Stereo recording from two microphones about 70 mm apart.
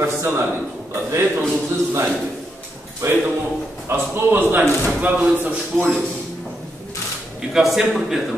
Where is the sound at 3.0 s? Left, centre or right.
Right.